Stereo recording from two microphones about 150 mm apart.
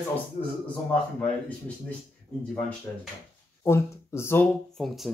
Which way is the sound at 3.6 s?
15° left (ahead or behind).